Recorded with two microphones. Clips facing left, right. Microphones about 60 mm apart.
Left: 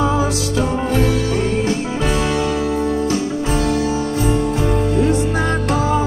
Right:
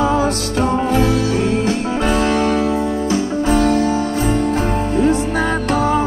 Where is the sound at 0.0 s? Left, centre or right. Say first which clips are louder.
Right 2 dB; right.